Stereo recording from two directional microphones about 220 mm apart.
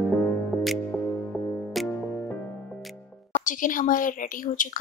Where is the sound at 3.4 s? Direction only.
35° left (ahead or behind).